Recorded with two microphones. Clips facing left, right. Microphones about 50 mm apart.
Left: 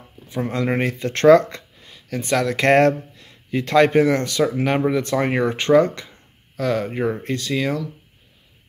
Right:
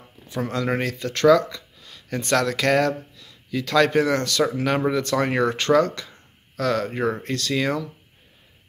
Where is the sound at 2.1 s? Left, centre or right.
Centre.